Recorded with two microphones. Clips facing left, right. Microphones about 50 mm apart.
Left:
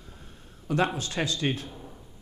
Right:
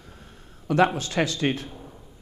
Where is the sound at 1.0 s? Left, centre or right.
Right.